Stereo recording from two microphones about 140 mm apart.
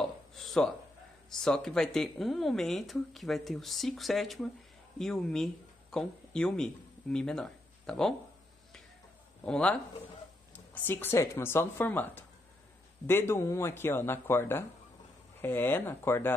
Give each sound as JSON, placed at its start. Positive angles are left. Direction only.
{"t": 0.0, "sound": "a sound", "side_deg": 0}
{"t": 1.3, "sound": "speech", "side_deg": 5}
{"t": 9.4, "sound": "speech", "side_deg": 5}